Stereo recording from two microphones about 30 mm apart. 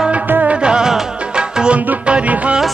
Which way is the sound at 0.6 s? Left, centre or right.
Right.